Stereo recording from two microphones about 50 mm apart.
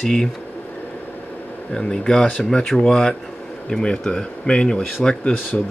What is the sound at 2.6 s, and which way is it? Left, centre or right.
Speech, centre.